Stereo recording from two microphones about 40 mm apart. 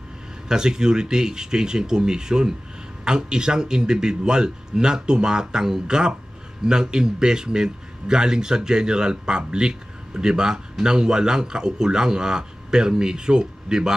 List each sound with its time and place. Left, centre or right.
0.5 s a man's voice: centre